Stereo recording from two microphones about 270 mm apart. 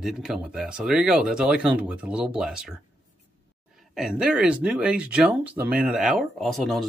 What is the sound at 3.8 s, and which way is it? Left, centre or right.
Speech, centre.